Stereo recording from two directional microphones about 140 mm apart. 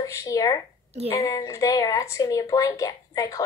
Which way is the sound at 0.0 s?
25° left (ahead or behind).